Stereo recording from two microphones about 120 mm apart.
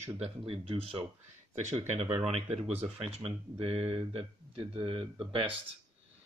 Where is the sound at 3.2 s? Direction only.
55° right (ahead or behind).